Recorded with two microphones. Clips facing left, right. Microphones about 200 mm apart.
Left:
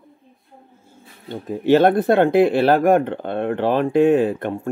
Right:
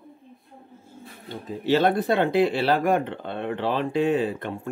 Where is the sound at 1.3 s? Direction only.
50° left (ahead or behind).